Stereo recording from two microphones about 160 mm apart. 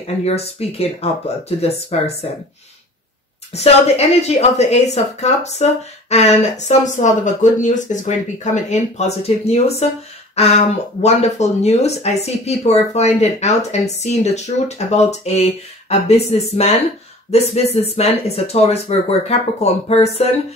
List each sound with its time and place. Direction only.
0.0 s speech: 40° left (ahead or behind)
3.5 s speech: 40° left (ahead or behind)